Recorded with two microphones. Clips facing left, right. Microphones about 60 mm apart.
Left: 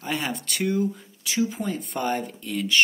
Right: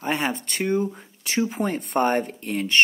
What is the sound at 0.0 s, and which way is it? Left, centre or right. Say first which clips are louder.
Speech: right 4 dB; right.